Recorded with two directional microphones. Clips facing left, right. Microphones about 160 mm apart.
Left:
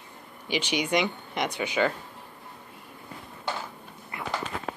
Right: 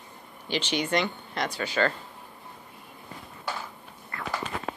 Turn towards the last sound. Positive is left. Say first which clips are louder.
# left 1 dB
turn(degrees=15)  # may be behind; listen again after turning